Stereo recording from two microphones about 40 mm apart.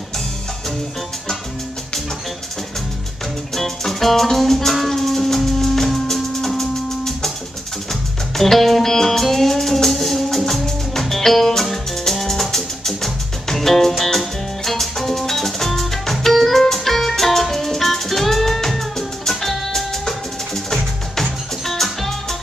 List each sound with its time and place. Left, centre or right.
3.5 s music: centre